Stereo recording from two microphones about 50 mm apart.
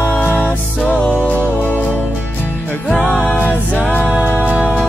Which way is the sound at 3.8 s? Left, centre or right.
Left.